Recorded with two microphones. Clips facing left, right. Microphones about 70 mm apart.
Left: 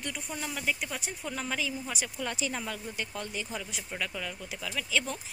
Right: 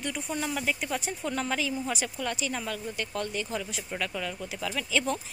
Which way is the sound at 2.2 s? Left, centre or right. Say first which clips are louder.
Even; left.